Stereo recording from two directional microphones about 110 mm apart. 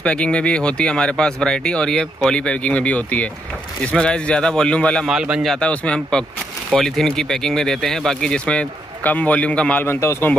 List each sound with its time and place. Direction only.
0.0 s speech: 10° left (ahead or behind)
5.0 s speech: 5° right (ahead or behind)
5.5 s speech: 10° left (ahead or behind)
9.8 s speech: 25° left (ahead or behind)